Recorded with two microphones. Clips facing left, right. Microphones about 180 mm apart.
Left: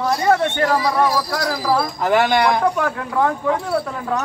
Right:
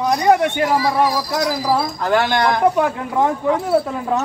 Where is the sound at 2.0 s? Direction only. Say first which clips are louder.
Left 3 dB; 15° left (ahead or behind).